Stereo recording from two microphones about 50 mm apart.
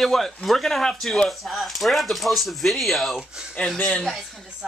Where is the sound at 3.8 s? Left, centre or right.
Left.